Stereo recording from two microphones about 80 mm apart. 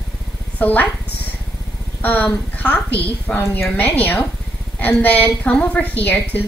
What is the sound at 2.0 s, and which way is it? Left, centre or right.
A woman's voice, centre.